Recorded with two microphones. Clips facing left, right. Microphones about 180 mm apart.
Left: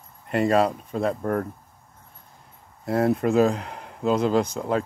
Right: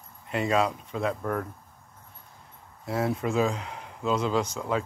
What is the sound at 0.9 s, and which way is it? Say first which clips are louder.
Speech: left 4 dB; 40° left (ahead or behind).